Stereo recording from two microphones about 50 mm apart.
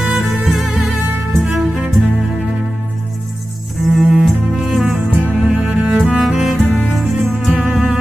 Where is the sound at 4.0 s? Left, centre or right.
Centre.